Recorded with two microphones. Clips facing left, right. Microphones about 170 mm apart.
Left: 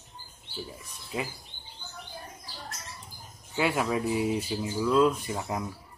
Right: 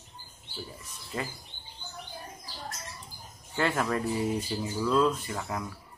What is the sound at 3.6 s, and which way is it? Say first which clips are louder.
Speech: left 1 dB; 10° left (ahead or behind).